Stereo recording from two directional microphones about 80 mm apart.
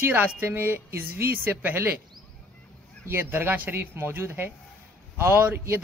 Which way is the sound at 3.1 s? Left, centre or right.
Right.